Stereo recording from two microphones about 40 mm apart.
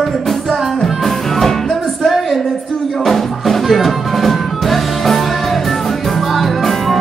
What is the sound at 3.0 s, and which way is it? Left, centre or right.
Music, centre.